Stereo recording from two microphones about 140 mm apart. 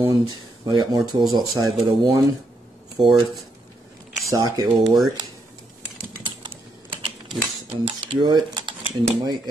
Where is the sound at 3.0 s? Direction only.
Centre (ahead or behind).